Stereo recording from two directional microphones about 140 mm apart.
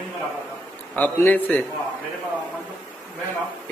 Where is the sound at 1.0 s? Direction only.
10° left (ahead or behind).